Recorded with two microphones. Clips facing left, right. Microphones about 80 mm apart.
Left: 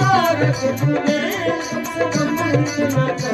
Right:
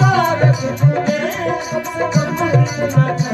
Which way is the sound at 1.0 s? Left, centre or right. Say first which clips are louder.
Right 1 dB; left.